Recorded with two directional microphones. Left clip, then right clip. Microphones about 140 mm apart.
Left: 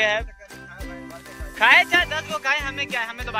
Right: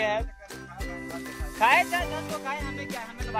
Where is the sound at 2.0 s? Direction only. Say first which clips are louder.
Left 8 dB; 20° left (ahead or behind).